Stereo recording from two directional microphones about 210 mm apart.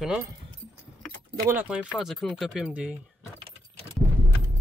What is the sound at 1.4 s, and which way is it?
Speech, 10° right (ahead or behind).